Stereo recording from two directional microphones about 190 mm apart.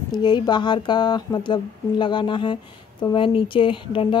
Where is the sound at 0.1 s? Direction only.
25° left (ahead or behind).